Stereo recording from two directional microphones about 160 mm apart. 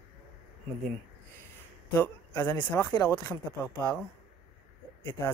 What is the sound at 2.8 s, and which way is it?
Speech, 10° left (ahead or behind).